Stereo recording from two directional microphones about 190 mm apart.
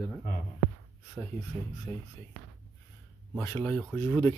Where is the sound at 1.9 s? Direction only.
10° left (ahead or behind).